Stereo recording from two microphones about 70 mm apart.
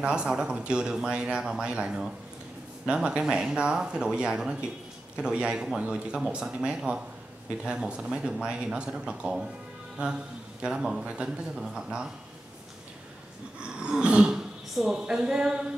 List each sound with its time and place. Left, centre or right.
0.0 s a man's voice: centre
13.6 s speech: centre